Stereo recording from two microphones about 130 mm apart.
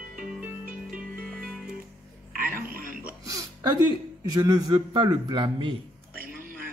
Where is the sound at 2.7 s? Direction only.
90° right.